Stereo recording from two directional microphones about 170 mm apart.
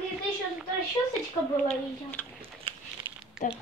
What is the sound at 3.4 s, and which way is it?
Speech, 45° left (ahead or behind).